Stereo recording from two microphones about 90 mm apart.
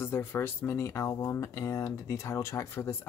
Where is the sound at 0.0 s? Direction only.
25° left (ahead or behind).